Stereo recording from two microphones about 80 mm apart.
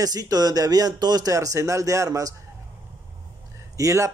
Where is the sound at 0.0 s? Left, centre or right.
Right.